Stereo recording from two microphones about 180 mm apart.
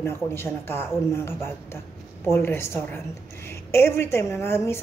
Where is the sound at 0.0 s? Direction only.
15° left (ahead or behind).